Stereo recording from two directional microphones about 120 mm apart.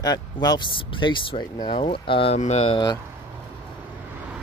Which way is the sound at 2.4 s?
65° left (ahead or behind).